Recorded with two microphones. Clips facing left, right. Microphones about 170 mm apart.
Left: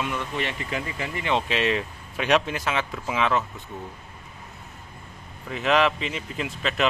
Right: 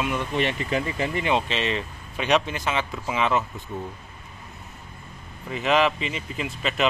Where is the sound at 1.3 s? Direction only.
5° left (ahead or behind).